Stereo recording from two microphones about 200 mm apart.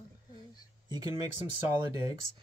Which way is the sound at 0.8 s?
20° right (ahead or behind).